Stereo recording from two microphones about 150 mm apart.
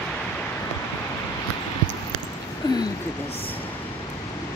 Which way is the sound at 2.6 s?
30° left (ahead or behind).